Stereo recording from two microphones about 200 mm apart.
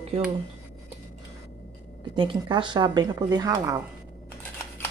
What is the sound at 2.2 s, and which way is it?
A woman's voice, 25° right (ahead or behind).